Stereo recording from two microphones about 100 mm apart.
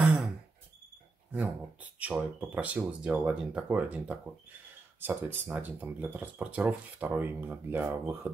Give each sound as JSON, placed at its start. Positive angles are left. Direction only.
{"t": 1.3, "sound": "speech", "side_deg": -15}